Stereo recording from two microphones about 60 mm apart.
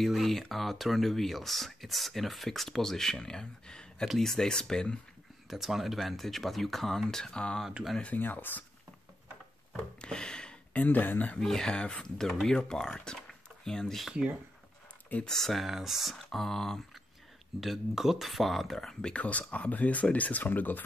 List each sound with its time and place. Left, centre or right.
0.0 s speech: centre
5.5 s speech: centre
8.0 s speech: left
9.7 s speech: centre
11.3 s speech: centre
12.2 s speech: centre
15.2 s speech: centre
17.6 s speech: centre
19.1 s speech: left